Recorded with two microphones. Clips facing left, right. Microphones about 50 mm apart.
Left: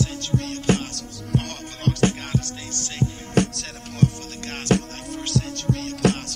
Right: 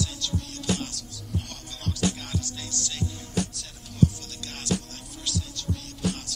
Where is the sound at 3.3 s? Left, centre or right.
Left.